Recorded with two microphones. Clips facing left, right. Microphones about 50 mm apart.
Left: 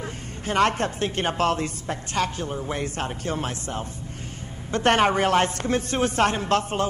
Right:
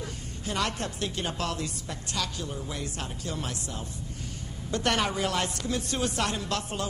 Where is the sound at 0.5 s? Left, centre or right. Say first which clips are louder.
Left 9 dB; left.